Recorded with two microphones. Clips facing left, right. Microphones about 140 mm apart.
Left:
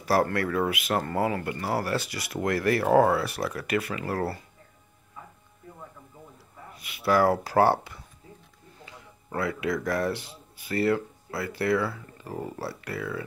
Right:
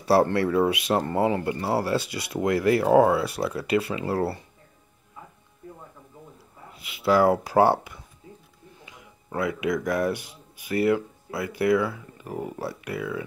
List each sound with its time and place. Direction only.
0.0 s speech: 25° right (ahead or behind); by 3.2 s 10° right (ahead or behind)
3.2 s speech: 25° right (ahead or behind)
6.8 s speech: 20° right (ahead or behind)